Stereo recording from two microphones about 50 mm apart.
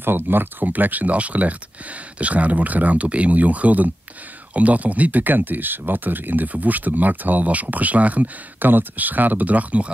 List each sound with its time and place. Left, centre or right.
0.0 s speech: right